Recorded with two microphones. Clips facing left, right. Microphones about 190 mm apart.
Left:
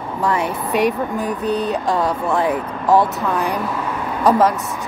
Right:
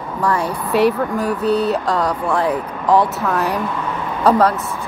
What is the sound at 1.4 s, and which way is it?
Mantra, 35° right (ahead or behind).